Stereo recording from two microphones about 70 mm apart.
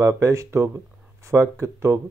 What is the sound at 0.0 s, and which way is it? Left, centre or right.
Speech, right.